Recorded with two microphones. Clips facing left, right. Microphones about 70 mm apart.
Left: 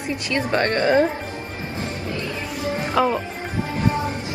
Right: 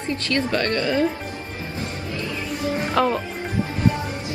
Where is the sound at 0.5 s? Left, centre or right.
Left.